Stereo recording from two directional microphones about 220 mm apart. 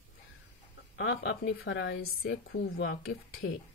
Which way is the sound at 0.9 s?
50° left (ahead or behind).